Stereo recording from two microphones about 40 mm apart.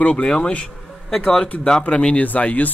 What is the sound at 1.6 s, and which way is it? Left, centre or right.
Speech, left.